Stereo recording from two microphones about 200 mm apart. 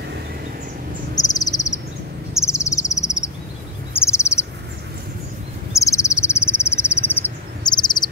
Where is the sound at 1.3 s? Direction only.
20° left (ahead or behind).